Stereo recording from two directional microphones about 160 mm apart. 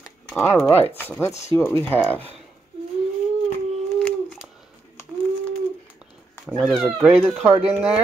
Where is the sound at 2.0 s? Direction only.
10° right (ahead or behind).